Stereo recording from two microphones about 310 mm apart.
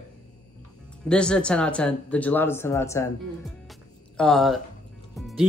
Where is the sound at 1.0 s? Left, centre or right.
Centre.